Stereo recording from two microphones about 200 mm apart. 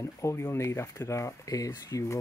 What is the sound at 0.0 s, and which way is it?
Speech, 15° left (ahead or behind).